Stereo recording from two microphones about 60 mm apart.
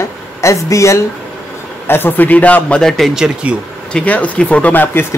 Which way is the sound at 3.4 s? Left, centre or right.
Right.